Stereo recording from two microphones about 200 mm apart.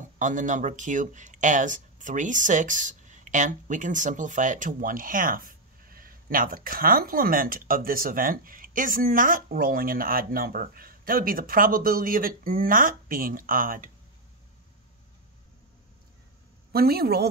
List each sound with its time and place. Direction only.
0.2 s speech: 40° right (ahead or behind)
16.7 s speech: 50° right (ahead or behind)